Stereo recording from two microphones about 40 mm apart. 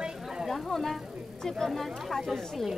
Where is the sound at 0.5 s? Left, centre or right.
Centre.